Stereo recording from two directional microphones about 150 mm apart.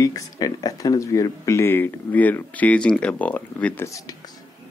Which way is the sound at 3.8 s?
20° left (ahead or behind).